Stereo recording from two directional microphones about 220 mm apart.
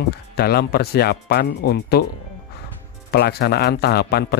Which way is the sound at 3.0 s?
45° left (ahead or behind).